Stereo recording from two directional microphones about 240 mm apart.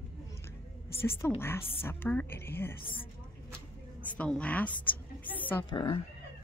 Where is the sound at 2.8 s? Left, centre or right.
Left.